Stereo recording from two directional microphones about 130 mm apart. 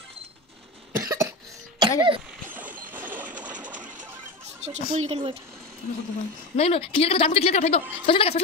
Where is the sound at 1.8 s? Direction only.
40° right (ahead or behind).